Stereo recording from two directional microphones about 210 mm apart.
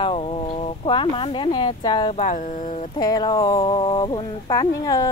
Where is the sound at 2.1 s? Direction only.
35° left (ahead or behind).